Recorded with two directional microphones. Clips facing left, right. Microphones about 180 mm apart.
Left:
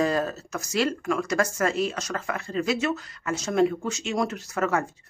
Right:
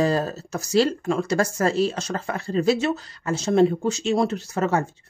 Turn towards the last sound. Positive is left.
turn(degrees=-30)  # may be behind; listen again after turning